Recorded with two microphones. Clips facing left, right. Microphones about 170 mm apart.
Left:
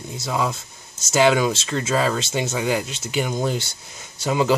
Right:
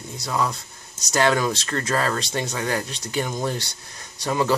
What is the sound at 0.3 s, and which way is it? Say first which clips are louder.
Speech: left 1 dB; 15° left (ahead or behind).